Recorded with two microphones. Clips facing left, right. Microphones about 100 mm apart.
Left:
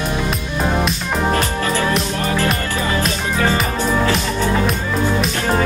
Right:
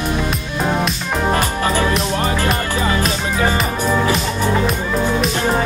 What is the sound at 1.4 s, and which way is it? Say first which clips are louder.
Music: right 1 dB; 20° right (ahead or behind).